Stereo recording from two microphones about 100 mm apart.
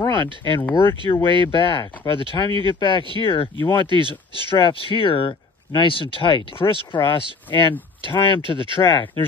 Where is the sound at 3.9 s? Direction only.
55° right (ahead or behind).